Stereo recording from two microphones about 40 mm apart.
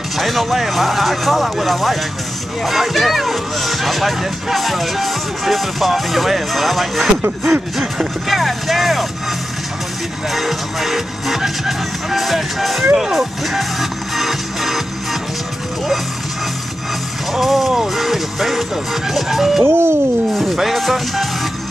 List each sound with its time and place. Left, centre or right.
0.2 s speech: centre
7.7 s music: centre
8.3 s speech: centre
10.3 s speech: centre
12.9 s music: centre
17.3 s speech: centre
19.6 s speech: right
20.5 s speech: centre